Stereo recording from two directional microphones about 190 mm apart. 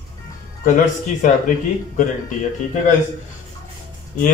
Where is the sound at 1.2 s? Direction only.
45° left (ahead or behind).